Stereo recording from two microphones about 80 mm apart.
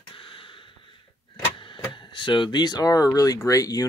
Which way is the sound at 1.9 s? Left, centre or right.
Left.